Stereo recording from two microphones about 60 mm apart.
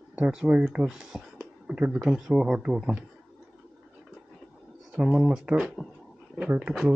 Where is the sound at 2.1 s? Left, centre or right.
Centre.